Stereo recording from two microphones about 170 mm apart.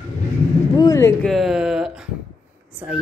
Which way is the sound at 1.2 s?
Centre (ahead or behind).